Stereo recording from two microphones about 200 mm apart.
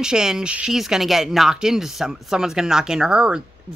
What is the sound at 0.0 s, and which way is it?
A woman's voice, 5° right (ahead or behind).